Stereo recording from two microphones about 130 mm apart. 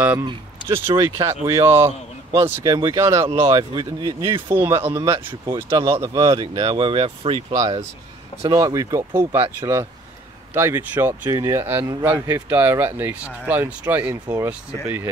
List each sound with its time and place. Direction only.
0.7 s speech: 20° right (ahead or behind)
3.4 s speech: 35° right (ahead or behind)
7.5 s speech: 60° right (ahead or behind)
8.4 s speech: 25° right (ahead or behind)
14.2 s speech: 30° right (ahead or behind)